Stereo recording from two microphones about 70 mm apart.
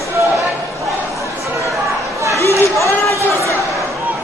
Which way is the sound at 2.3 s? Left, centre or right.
Left.